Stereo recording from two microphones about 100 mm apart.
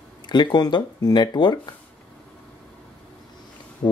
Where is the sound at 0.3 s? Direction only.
45° left (ahead or behind).